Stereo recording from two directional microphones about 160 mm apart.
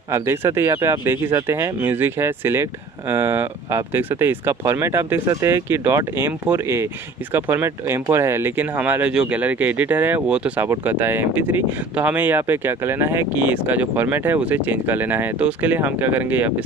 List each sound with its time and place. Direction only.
0.1 s speech: 15° right (ahead or behind)